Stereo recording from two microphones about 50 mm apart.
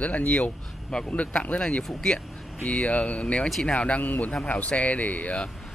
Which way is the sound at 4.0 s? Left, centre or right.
Left.